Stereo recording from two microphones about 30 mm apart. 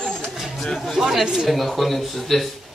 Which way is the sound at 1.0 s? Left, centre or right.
Centre.